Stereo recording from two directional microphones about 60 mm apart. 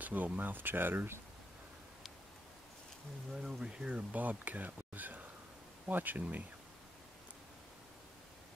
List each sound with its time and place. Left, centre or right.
0.0 s speech: right
3.3 s speech: centre; by 6.2 s right